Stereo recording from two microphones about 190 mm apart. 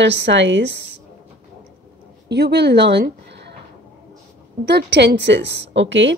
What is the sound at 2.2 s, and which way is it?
Speech, 60° right (ahead or behind).